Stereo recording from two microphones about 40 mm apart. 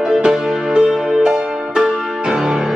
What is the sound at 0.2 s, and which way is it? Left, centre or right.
Music, centre.